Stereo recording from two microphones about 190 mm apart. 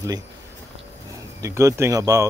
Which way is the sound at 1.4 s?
15° right (ahead or behind).